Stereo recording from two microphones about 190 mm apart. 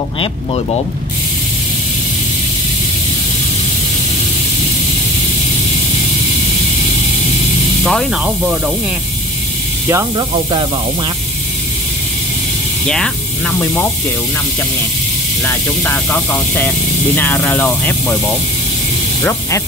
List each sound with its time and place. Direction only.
7.8 s speech: centre (ahead or behind)
10.1 s speech: 25° right (ahead or behind)
12.8 s speech: 5° left (ahead or behind)
15.4 s speech: 15° left (ahead or behind)